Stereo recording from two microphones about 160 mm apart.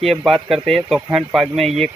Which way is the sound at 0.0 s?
Centre (ahead or behind).